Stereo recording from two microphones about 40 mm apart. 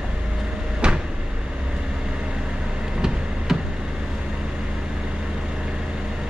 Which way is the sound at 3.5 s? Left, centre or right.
Centre.